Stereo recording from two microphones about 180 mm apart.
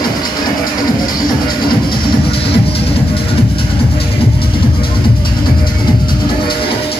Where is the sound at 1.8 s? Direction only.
30° left (ahead or behind).